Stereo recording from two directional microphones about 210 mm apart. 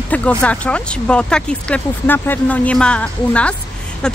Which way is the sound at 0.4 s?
5° left (ahead or behind).